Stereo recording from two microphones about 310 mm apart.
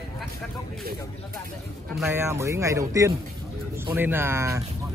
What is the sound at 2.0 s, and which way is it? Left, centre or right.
Speech, centre.